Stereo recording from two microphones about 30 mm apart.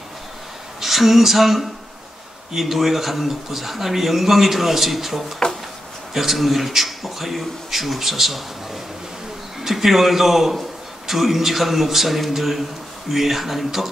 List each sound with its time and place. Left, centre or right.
0.7 s speech: centre
5.4 s drawer open or close: left
6.1 s speech: centre
9.6 s speech: centre